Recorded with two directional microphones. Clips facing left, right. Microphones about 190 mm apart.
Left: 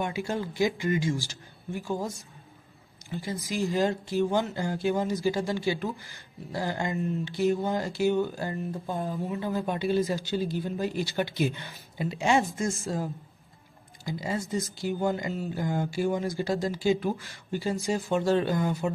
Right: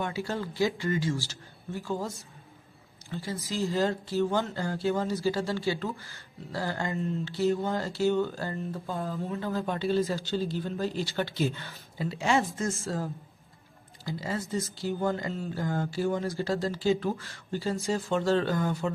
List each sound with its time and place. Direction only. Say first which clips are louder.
0.0 s speech: left 2 dB; 15° left (ahead or behind)